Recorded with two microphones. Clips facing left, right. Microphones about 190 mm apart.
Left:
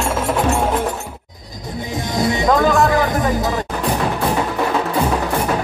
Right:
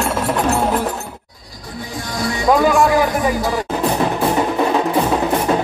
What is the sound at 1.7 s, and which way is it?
Music, 20° left (ahead or behind).